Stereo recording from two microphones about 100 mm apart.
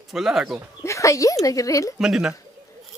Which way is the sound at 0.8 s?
30° left (ahead or behind).